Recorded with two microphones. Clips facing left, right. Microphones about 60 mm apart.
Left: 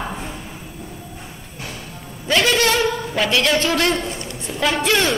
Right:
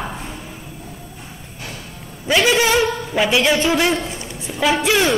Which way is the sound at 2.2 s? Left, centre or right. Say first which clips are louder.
Right 2 dB; centre.